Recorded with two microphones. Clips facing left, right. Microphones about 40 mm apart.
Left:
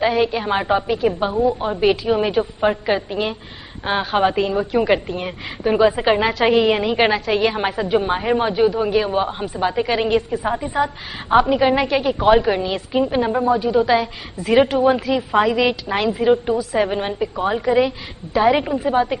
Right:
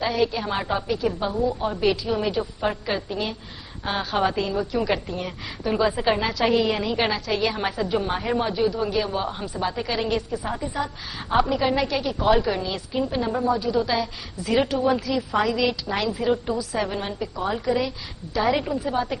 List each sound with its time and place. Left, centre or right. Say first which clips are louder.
0.0 s a woman's voice: left 5 dB; left